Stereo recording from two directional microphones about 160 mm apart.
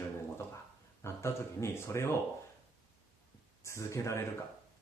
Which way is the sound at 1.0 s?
15° left (ahead or behind).